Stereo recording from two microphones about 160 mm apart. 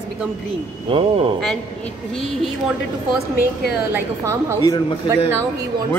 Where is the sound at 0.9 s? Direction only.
35° right (ahead or behind).